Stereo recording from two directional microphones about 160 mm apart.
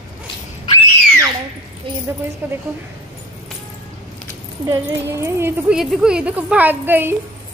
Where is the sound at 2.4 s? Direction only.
10° right (ahead or behind).